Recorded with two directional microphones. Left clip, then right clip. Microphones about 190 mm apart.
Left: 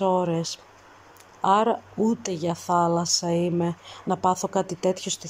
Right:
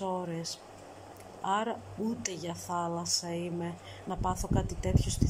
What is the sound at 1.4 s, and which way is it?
Speech, 20° left (ahead or behind).